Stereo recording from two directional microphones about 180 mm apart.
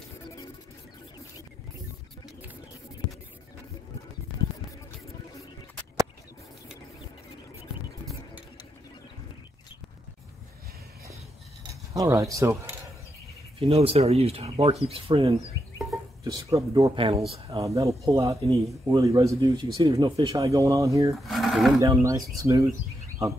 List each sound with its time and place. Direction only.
11.9 s speech: 20° right (ahead or behind)
13.6 s speech: 35° right (ahead or behind)
16.3 s speech: 20° right (ahead or behind)
16.9 s speech: 30° right (ahead or behind)
17.6 s a man's voice: 15° right (ahead or behind)
21.3 s sewing machine: centre (ahead or behind)
21.7 s a man's voice: 20° right (ahead or behind)